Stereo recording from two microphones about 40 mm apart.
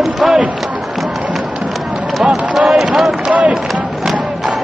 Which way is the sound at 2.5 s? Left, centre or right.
Centre.